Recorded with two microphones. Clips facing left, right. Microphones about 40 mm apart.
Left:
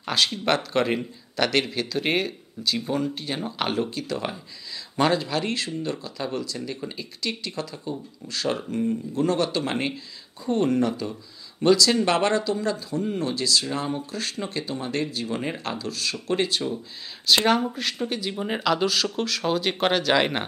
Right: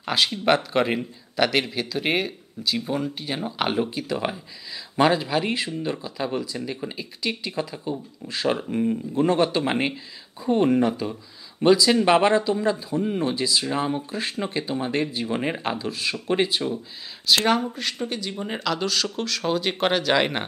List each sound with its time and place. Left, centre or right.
0.0 s speech: centre
17.5 s speech: centre